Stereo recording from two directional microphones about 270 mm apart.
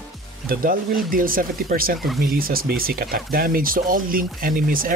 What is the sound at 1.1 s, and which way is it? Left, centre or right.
Speech, right.